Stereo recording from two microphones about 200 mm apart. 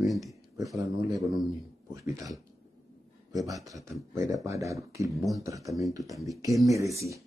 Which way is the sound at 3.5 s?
15° right (ahead or behind).